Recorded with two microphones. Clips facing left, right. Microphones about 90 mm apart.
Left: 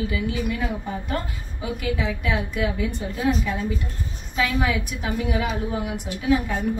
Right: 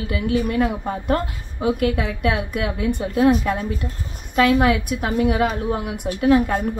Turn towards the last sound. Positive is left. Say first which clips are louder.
# right 5 dB
turn(degrees=-55)  # may be behind; listen again after turning